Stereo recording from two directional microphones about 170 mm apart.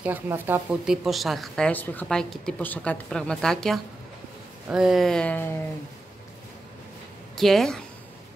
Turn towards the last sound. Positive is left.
turn(degrees=5)  # may be behind; listen again after turning